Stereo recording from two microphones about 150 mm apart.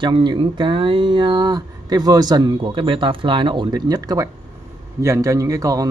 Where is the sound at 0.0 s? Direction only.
30° right (ahead or behind).